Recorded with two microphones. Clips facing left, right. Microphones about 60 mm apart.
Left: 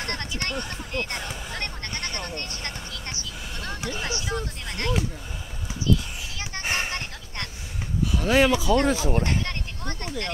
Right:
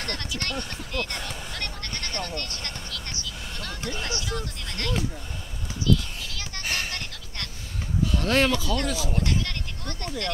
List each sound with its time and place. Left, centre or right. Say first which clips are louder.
0.1 s speech: left 1 dB; left
0.6 s speech: left 1 dB; centre
1.1 s music: left 2 dB; centre
1.6 s sheep: left 2 dB; left
3.6 s speech: left 2 dB; centre
5.9 s a sound: even; left
8.1 s speech: left 3 dB; centre; by 10.3 s left